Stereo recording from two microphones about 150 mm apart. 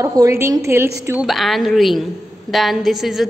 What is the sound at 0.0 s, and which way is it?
Speech, 20° right (ahead or behind).